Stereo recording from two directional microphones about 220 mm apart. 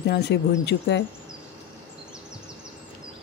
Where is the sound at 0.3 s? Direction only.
50° left (ahead or behind).